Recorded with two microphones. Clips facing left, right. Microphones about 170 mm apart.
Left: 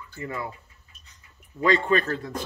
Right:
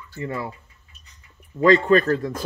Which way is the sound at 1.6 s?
40° right (ahead or behind).